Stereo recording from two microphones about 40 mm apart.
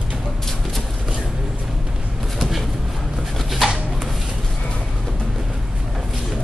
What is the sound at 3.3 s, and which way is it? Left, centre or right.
Pigeon, centre.